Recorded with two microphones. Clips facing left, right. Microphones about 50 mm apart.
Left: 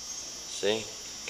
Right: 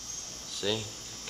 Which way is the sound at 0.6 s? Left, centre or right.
Left.